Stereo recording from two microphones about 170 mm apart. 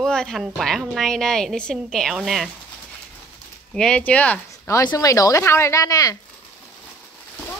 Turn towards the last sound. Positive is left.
turn(degrees=20)  # may be behind; listen again after turning